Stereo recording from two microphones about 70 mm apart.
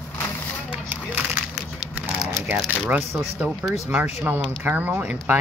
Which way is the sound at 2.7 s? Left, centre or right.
Right.